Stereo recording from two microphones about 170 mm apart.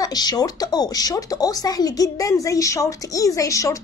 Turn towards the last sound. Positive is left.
turn(degrees=20)  # may be behind; listen again after turning